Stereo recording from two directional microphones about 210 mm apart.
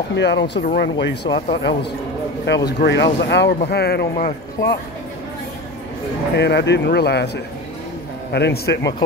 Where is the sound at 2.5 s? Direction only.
55° left (ahead or behind).